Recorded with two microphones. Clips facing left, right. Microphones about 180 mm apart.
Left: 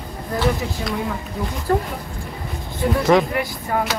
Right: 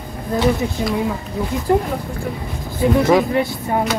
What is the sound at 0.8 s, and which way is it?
Speech, 20° right (ahead or behind).